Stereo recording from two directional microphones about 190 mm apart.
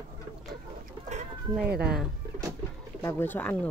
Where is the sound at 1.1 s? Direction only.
55° right (ahead or behind).